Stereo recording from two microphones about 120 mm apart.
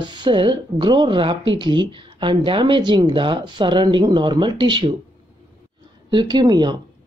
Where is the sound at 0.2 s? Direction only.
40° right (ahead or behind).